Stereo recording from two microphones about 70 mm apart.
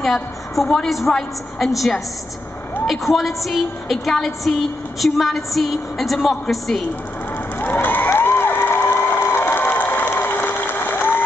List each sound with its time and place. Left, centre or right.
0.0 s a woman's voice: centre
2.9 s a woman's voice: centre
7.6 s crowd: left
8.1 s cheering: left